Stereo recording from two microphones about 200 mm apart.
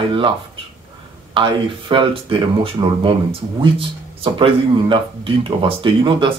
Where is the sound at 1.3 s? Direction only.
25° right (ahead or behind).